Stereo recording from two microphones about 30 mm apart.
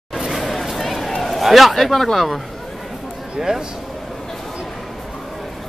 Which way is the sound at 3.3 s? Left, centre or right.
Centre.